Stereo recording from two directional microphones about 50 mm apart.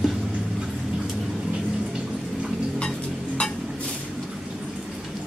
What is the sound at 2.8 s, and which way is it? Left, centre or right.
Music, centre.